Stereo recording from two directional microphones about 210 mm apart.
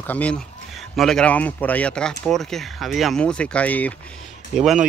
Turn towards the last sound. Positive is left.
turn(degrees=0)  # may be behind; listen again after turning